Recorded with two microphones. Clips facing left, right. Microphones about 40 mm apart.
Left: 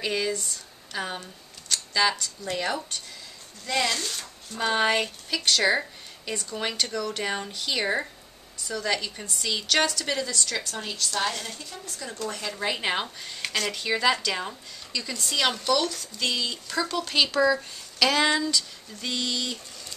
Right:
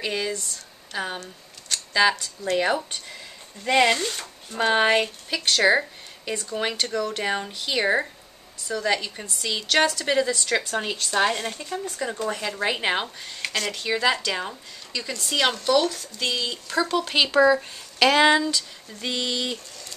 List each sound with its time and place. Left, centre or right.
0.0 s a woman's voice: centre
1.7 s a sound: centre
2.5 s speech: centre
3.6 s speech: right
4.5 s a woman's voice: centre; by 11.8 s right
11.8 s speech: right
12.4 s a woman's voice: centre